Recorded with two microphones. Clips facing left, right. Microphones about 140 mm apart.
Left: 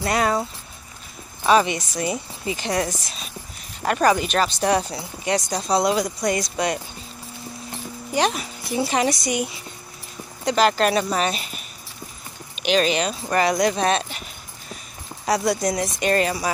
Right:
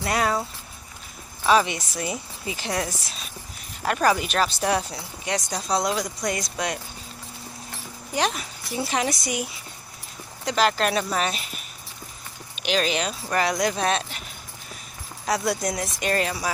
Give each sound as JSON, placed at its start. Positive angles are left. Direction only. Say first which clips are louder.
{"t": 0.0, "sound": "speech", "louder": "left 3 dB", "side_deg": 0}
{"t": 8.1, "sound": "speech", "louder": "left 4 dB", "side_deg": 0}
{"t": 15.2, "sound": "speech", "louder": "left 4 dB", "side_deg": 0}